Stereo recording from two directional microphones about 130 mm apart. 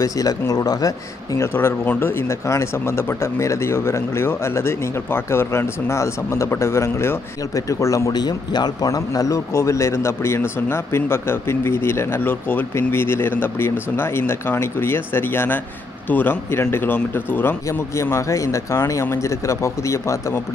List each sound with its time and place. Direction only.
0.0 s speech: 25° left (ahead or behind)